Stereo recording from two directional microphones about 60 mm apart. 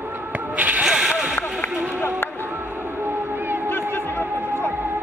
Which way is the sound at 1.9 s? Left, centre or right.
Left.